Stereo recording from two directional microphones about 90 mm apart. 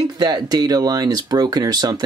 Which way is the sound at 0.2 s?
50° right (ahead or behind).